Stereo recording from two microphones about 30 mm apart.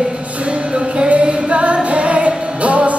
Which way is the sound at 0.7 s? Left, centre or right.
Right.